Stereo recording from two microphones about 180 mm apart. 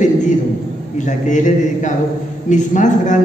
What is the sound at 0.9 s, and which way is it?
A man's voice, 45° left (ahead or behind).